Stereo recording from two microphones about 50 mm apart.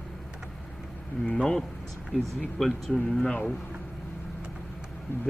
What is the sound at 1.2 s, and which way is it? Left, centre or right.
Speech, centre.